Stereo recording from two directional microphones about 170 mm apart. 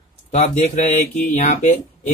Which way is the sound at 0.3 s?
40° left (ahead or behind).